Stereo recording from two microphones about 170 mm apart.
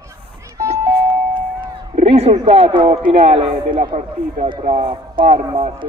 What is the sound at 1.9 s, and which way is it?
Speech, 35° right (ahead or behind).